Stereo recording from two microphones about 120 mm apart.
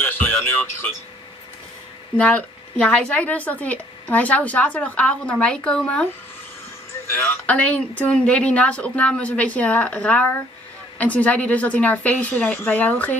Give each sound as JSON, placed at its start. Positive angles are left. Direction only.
{"t": 0.0, "sound": "music", "side_deg": 15}
{"t": 2.1, "sound": "speech", "side_deg": 10}
{"t": 7.1, "sound": "speech", "side_deg": 20}
{"t": 7.4, "sound": "speech", "side_deg": 10}